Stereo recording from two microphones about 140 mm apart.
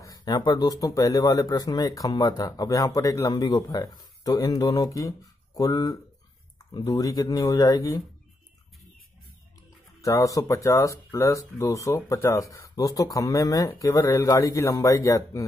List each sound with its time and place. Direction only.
0.0 s speech: 30° left (ahead or behind)
10.0 s speech: 25° left (ahead or behind)